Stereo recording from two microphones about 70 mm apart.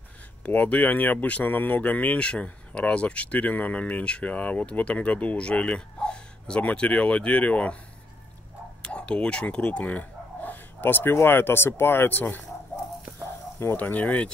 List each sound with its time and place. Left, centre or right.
0.4 s speech: centre
8.8 s a sound: centre
11.1 s speech: left
13.7 s speech: left